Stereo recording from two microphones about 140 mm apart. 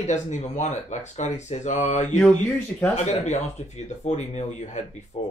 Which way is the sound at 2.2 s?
10° left (ahead or behind).